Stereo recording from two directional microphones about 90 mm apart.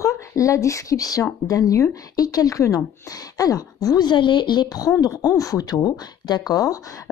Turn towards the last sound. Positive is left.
turn(degrees=40)  # may be behind; listen again after turning